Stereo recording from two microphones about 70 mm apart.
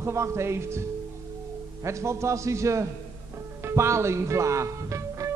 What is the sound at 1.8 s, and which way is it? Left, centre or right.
A man's voice, right.